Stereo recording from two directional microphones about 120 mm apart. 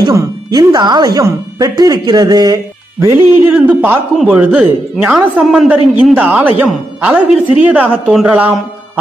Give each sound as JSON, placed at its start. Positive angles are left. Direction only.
{"t": 0.0, "sound": "speech", "side_deg": -30}
{"t": 3.5, "sound": "a man's voice", "side_deg": -15}